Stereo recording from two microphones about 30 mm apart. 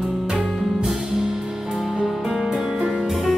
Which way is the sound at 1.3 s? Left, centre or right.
Centre.